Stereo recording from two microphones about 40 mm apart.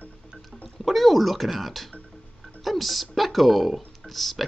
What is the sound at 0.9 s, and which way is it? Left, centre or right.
Speech, centre.